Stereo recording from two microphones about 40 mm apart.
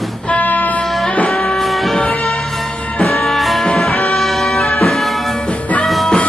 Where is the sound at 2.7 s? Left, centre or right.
Left.